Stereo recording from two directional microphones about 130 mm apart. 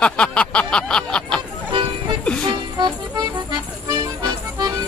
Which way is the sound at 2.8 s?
35° right (ahead or behind).